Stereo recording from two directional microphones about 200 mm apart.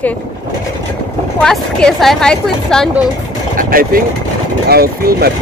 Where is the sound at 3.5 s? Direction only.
45° right (ahead or behind).